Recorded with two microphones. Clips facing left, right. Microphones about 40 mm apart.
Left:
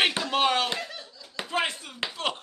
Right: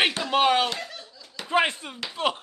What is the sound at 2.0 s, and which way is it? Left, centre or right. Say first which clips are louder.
Speech: left 4 dB; left.